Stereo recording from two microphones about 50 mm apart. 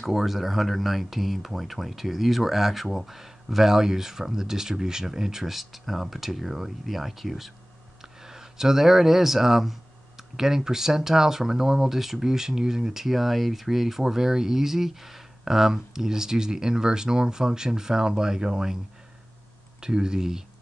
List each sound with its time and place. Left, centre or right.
0.0 s speech: centre
19.8 s speech: centre